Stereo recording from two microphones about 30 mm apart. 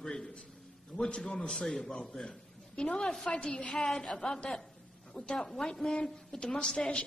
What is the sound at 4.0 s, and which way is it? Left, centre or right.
Speech, left.